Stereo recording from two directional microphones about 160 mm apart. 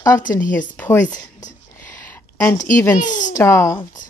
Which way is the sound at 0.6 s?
10° left (ahead or behind).